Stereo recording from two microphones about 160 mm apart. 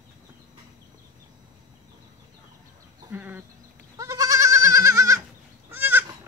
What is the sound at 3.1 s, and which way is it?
Goat, 10° right (ahead or behind).